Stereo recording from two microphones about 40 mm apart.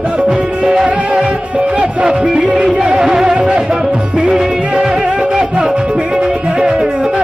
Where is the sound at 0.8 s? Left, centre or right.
Right.